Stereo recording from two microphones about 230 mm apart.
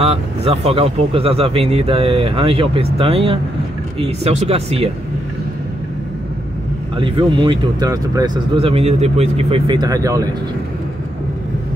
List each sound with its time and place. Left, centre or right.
0.0 s speech: right
7.0 s speech: right
8.6 s speech: right